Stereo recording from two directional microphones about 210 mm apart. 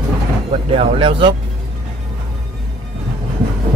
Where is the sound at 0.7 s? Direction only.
25° right (ahead or behind).